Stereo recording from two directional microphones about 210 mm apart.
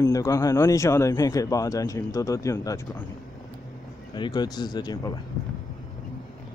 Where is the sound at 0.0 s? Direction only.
15° left (ahead or behind).